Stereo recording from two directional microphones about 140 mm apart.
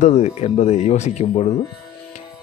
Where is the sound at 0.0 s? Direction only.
55° left (ahead or behind).